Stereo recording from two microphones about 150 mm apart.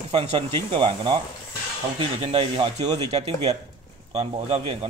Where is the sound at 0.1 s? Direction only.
45° right (ahead or behind).